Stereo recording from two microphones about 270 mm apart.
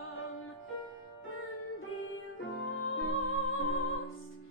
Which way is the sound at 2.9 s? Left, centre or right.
Left.